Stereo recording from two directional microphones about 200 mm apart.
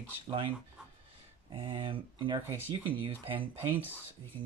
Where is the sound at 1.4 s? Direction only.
25° right (ahead or behind).